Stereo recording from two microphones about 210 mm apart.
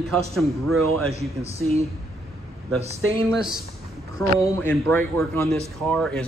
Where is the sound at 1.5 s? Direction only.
30° right (ahead or behind).